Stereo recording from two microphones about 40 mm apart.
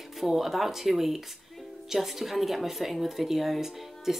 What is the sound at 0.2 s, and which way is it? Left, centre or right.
A woman's voice, centre.